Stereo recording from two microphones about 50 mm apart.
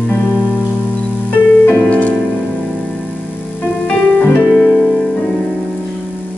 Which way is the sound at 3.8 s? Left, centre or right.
Left.